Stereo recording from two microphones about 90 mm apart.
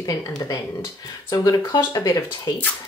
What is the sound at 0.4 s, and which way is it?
Speech, 45° left (ahead or behind).